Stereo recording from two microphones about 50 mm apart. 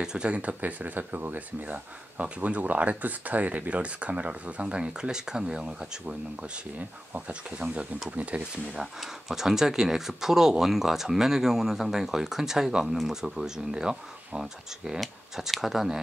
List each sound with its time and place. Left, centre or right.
0.0 s speech: centre
0.3 s speech: right
7.1 s speech: right
9.0 s speech: centre